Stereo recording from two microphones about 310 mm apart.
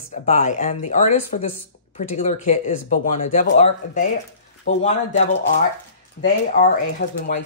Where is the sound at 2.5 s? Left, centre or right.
Left.